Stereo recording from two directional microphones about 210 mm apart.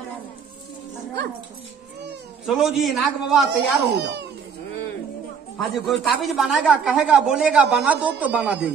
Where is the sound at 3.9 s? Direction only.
50° right (ahead or behind).